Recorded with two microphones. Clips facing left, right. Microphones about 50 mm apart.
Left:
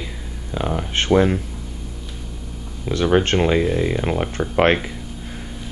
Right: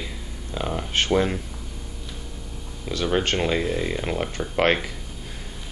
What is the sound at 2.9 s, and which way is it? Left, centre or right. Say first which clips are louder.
Speech: left 6 dB; centre.